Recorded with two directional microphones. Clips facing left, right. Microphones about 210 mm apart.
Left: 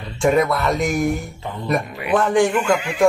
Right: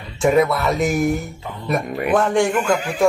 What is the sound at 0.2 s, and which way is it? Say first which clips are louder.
Speech: right 1 dB; centre (ahead or behind).